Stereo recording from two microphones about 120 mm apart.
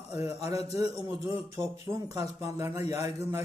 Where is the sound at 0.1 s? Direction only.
25° right (ahead or behind).